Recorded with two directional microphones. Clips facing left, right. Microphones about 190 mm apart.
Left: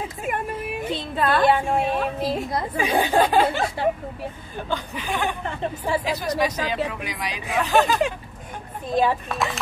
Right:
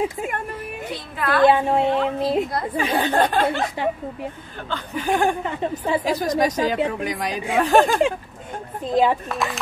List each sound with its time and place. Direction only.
0.9 s a woman's voice: 25° left (ahead or behind)
1.4 s a woman's voice: 25° right (ahead or behind)
2.5 s speech: 10° left (ahead or behind)
3.8 s a woman's voice: 15° right (ahead or behind)
4.9 s speech: 45° right (ahead or behind)
5.4 s a woman's voice: 15° right (ahead or behind)
6.0 s speech: 45° right (ahead or behind)
8.8 s a woman's voice: 20° right (ahead or behind)
9.3 s speech: centre (ahead or behind)